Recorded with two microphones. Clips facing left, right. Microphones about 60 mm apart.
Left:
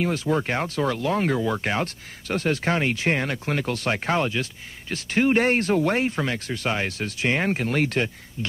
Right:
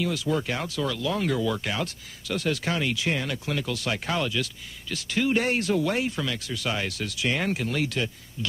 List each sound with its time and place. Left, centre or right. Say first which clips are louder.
0.0 s speech: left 3 dB; left